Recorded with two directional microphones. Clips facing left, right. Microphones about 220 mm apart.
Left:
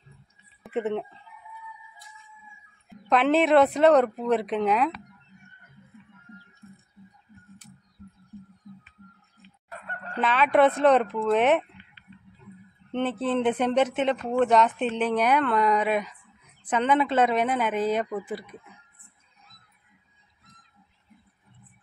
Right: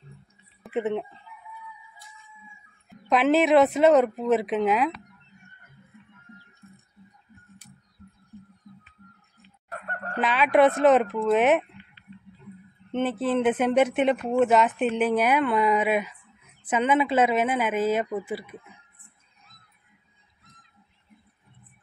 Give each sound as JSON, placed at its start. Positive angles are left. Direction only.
{"t": 0.7, "sound": "speech", "side_deg": 0}
{"t": 2.9, "sound": "speech", "side_deg": 0}
{"t": 9.7, "sound": "goose", "side_deg": -50}
{"t": 10.2, "sound": "speech", "side_deg": -5}
{"t": 12.9, "sound": "speech", "side_deg": -5}